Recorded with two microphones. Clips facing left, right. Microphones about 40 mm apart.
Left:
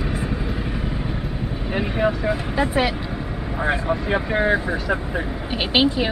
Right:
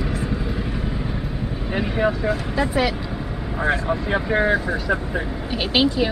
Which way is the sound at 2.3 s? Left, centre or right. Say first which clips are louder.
Left 1 dB; centre.